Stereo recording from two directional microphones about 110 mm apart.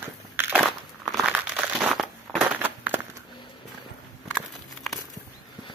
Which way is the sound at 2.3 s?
15° right (ahead or behind).